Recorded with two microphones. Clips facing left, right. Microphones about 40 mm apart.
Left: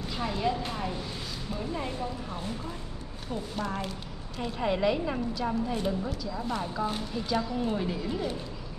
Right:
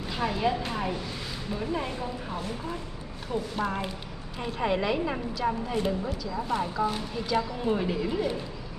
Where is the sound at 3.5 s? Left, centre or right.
Centre.